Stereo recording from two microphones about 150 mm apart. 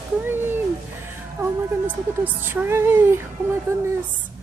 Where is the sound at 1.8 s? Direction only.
10° right (ahead or behind).